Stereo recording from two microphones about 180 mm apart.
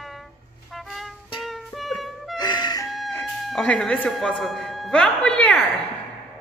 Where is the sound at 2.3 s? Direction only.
25° left (ahead or behind).